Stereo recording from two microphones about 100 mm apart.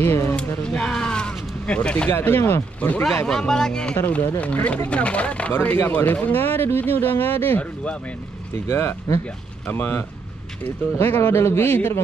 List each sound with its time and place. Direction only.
0.0 s speech: 25° left (ahead or behind)
0.7 s a sound: 10° left (ahead or behind)
2.1 s speech: 25° left (ahead or behind)
11.1 s speech: 25° left (ahead or behind)